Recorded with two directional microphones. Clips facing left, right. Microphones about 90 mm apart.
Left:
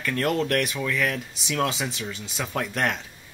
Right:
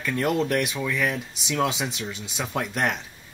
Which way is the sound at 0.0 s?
10° right (ahead or behind).